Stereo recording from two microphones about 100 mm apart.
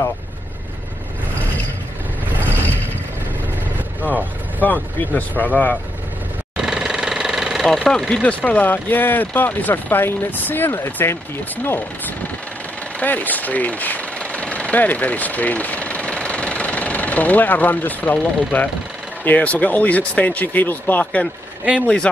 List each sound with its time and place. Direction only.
4.6 s speech: 15° left (ahead or behind)
6.5 s speech: 5° right (ahead or behind); by 11.8 s 20° left (ahead or behind)
13.0 s engine: 15° left (ahead or behind)
19.2 s speech: 15° left (ahead or behind)